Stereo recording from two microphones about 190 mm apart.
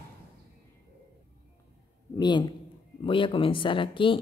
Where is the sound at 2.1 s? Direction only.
25° left (ahead or behind).